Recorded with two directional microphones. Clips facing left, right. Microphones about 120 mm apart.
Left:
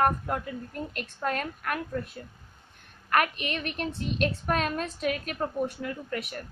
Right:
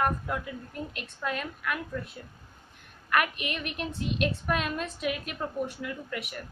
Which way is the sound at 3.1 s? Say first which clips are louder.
Left 2 dB; 35° left (ahead or behind).